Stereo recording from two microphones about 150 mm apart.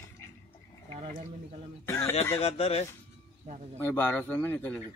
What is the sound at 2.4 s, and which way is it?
Speech, 40° left (ahead or behind).